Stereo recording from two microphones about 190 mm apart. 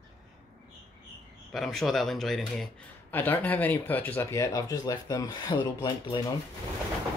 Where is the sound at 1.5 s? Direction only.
Centre (ahead or behind); by 6.1 s 25° left (ahead or behind).